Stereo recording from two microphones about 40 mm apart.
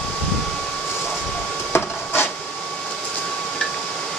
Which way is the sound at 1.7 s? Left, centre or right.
Left.